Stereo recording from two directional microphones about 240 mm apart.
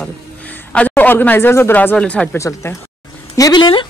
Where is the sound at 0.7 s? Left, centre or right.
Centre.